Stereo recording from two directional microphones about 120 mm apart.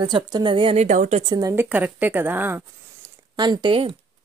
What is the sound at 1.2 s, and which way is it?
Speech, 35° right (ahead or behind).